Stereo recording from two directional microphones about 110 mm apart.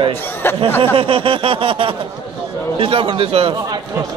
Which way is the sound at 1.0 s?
55° right (ahead or behind).